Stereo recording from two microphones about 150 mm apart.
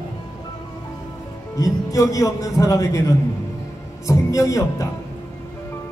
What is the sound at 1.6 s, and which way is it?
A man's voice, 20° left (ahead or behind).